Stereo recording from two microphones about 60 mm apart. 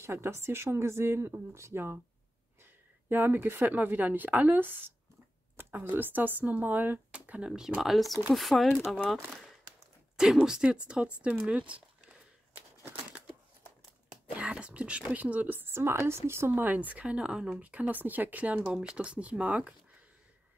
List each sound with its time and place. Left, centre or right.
0.0 s speech: right
2.6 s a sound: right
3.7 s a woman's voice: right
5.6 s a sound: right
5.9 s a woman's voice: right
7.1 s speech: right
7.8 s a woman's voice: centre; by 12.2 s right
14.3 s speech: centre; by 16.6 s right
16.6 s speech: right
17.6 s a woman's voice: right